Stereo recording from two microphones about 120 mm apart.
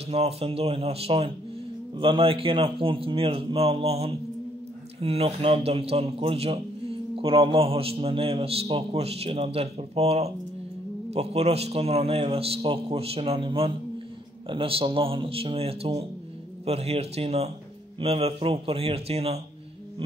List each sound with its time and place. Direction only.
0.1 s a man's voice: 55° right (ahead or behind)